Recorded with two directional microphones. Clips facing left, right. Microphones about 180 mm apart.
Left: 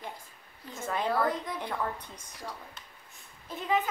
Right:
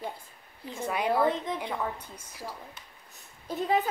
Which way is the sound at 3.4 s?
40° right (ahead or behind).